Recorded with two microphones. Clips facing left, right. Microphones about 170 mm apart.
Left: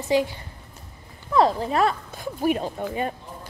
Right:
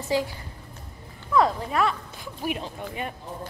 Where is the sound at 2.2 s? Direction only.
40° left (ahead or behind).